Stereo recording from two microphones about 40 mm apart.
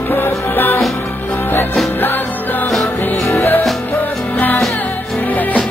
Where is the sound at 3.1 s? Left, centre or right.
Left.